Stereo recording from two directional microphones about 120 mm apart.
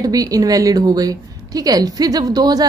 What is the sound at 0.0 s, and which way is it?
A woman's voice, 30° right (ahead or behind).